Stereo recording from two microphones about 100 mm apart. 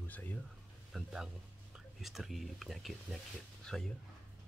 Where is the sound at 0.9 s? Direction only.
5° right (ahead or behind).